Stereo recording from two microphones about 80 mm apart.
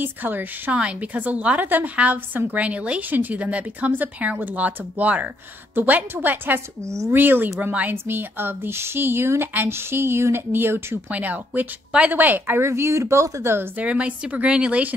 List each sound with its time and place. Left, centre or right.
0.0 s a woman's voice: right
6.9 s speech: right
7.2 s a woman's voice: right
13.7 s a woman's voice: centre